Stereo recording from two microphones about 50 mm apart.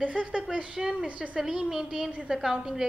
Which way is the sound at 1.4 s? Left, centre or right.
Centre.